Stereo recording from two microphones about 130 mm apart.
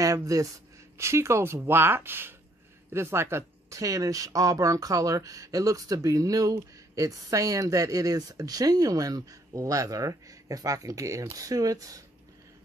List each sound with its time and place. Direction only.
0.0 s speech: 25° right (ahead or behind)